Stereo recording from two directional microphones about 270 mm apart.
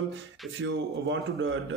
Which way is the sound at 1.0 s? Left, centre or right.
Right.